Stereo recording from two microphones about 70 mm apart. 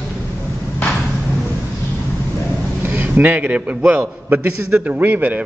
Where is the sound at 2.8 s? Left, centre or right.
Right.